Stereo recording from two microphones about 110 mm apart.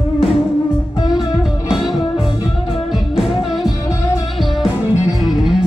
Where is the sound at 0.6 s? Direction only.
50° left (ahead or behind).